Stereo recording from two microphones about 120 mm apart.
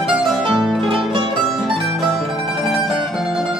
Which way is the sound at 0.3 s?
Centre (ahead or behind).